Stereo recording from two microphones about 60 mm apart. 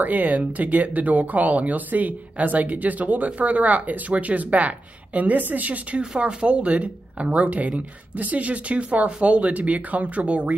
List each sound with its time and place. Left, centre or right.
0.0 s speech: right